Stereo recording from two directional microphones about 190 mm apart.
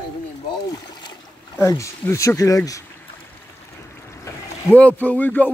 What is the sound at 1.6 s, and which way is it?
Speech, 15° left (ahead or behind).